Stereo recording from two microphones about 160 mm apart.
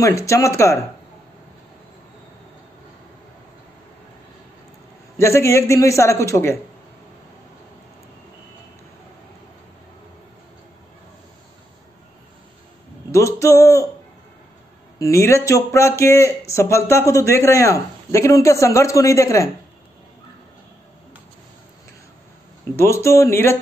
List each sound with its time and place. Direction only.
0.0 s speech: 20° left (ahead or behind)
5.2 s a man's voice: 15° left (ahead or behind)
13.1 s speech: 20° left (ahead or behind)
15.0 s speech: 20° left (ahead or behind)
22.8 s a man's voice: 15° left (ahead or behind)